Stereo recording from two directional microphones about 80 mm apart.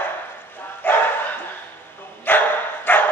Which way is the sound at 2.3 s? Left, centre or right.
Left.